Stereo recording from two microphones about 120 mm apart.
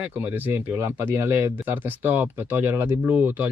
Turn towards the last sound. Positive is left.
turn(degrees=-15)  # may be behind; listen again after turning